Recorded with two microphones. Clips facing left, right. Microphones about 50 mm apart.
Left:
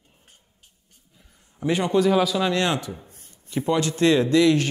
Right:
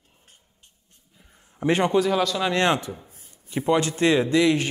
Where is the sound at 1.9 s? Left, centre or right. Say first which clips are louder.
Left 2 dB; centre.